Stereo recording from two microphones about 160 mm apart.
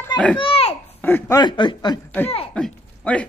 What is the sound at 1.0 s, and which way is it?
Speech, 15° left (ahead or behind).